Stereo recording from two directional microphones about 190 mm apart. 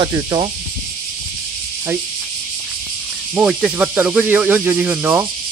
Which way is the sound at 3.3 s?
5° right (ahead or behind).